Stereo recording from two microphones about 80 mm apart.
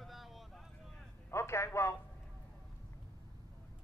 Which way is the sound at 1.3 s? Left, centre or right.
Left.